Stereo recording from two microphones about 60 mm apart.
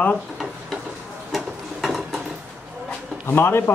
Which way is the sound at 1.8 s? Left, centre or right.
Centre.